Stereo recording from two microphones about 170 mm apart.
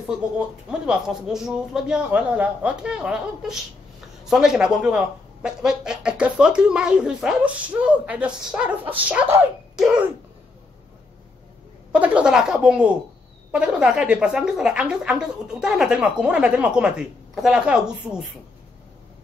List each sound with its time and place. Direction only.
0.7 s speech: 5° right (ahead or behind)
11.9 s speech: 5° right (ahead or behind)